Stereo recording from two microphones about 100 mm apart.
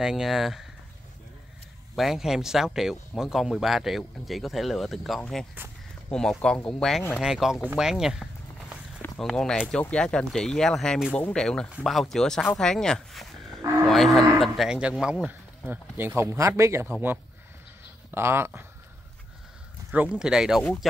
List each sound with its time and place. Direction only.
0.0 s speech: 5° right (ahead or behind)
2.0 s speech: 5° right (ahead or behind)
7.7 s a sound: 5° right (ahead or behind)
9.2 s speech: 5° left (ahead or behind)
13.8 s livestock: 5° left (ahead or behind)
14.8 s speech: 10° right (ahead or behind); by 16.9 s 25° right (ahead or behind)
18.1 s speech: 25° right (ahead or behind)
19.9 s speech: 10° right (ahead or behind)